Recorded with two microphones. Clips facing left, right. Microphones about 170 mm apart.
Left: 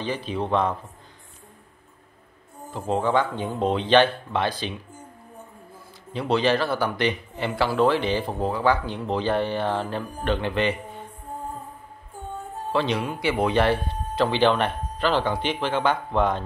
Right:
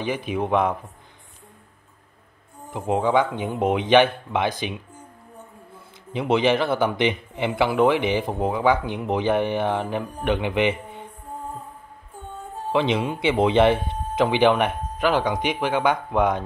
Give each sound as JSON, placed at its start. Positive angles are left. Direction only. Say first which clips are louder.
{"t": 0.0, "sound": "speech", "louder": "right 2 dB", "side_deg": -15}
{"t": 2.7, "sound": "speech", "louder": "right 2 dB", "side_deg": -15}
{"t": 6.1, "sound": "speech", "louder": "right 2 dB", "side_deg": -20}
{"t": 12.7, "sound": "speech", "louder": "right 3 dB", "side_deg": -20}